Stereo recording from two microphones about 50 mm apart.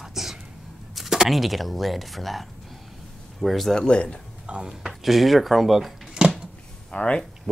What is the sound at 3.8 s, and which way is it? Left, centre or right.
Speech, left.